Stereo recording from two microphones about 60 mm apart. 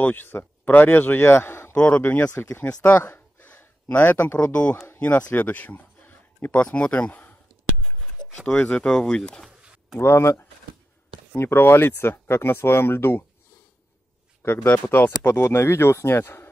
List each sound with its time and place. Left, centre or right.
0.0 s a man's voice: left
1.8 s speech: left
2.3 s speech: left
2.6 s a sound: left
4.5 s speech: left
8.4 s speech: centre
9.6 s a sound: centre
9.9 s speech: left
14.4 s speech: left
14.7 s speech: left